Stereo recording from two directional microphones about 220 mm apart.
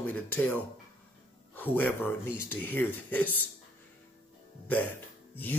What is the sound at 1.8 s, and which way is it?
Speech, 10° left (ahead or behind).